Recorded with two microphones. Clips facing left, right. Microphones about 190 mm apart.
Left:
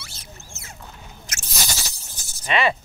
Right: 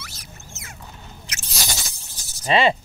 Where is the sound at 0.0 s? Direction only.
30° left (ahead or behind).